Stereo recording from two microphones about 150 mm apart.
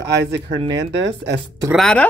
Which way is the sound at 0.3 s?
25° right (ahead or behind).